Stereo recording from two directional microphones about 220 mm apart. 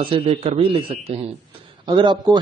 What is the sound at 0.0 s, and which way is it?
A man's voice, 25° right (ahead or behind).